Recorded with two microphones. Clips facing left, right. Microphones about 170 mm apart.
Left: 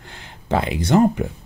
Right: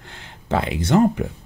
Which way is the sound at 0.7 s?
35° left (ahead or behind).